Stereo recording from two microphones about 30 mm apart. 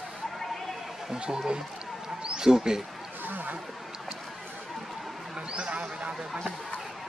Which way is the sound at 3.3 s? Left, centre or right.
Right.